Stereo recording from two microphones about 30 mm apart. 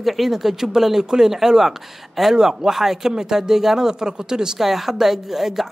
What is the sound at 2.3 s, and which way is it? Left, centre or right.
Speech, right.